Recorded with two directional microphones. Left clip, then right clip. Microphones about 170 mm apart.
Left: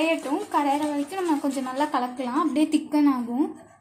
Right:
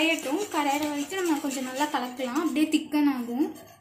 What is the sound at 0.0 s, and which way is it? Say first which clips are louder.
A woman's voice: left 1 dB; 55° left (ahead or behind).